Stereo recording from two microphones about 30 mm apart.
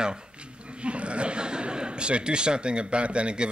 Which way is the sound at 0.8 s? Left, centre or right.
Right.